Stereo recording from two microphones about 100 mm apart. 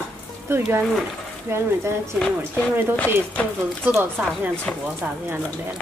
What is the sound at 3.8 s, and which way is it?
Speech, 20° right (ahead or behind).